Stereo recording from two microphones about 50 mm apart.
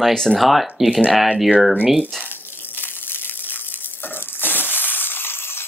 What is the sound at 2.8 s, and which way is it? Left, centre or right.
Crushing, left.